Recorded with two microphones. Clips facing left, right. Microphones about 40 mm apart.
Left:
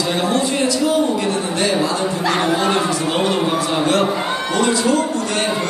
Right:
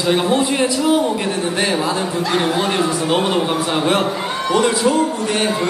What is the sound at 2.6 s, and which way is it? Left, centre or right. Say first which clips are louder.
Speech: even; centre.